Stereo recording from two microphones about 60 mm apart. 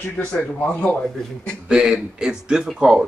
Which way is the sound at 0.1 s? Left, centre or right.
Left.